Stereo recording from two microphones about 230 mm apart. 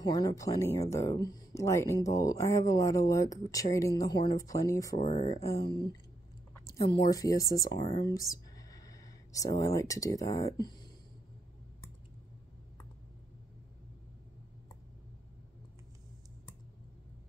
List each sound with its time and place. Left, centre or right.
0.0 s speech: centre
4.9 s speech: left
5.3 s speech: centre